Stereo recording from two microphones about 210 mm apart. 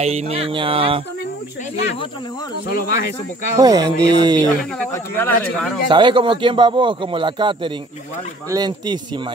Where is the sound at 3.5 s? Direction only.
15° right (ahead or behind).